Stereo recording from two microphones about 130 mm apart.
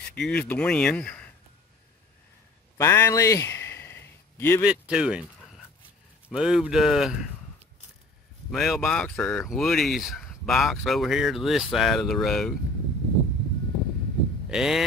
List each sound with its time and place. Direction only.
0.1 s speech: 10° left (ahead or behind)
2.8 s a sound: 25° left (ahead or behind)
4.6 s speech: 5° right (ahead or behind)
6.3 s speech: 5° right (ahead or behind)
8.5 s speech: centre (ahead or behind)
14.5 s speech: 5° right (ahead or behind)